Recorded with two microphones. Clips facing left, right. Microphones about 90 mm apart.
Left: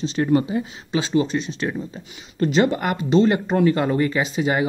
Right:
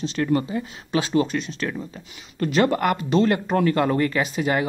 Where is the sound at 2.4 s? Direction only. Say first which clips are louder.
Left 1 dB; 10° left (ahead or behind).